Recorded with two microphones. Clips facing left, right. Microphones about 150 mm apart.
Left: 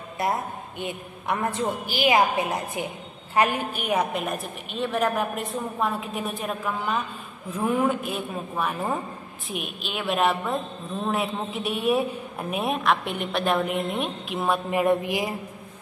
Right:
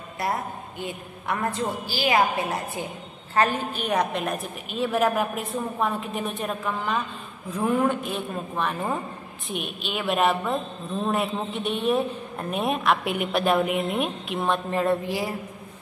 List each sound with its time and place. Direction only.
0.2 s a woman's voice: 20° left (ahead or behind)